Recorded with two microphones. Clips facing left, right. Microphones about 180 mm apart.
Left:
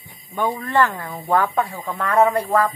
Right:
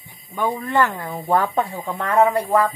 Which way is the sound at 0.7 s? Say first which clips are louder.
Left 1 dB; 15° right (ahead or behind).